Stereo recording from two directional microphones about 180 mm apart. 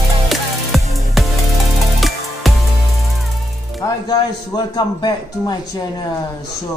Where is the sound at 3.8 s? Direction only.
20° left (ahead or behind).